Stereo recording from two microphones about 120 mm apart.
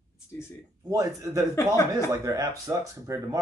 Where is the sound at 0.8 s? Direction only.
25° right (ahead or behind).